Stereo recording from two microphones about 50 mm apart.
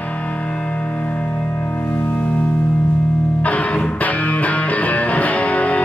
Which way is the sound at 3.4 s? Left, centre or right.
Left.